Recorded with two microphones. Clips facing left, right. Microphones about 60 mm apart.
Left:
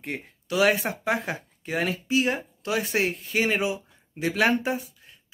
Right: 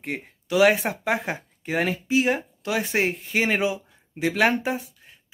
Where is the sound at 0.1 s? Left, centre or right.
Right.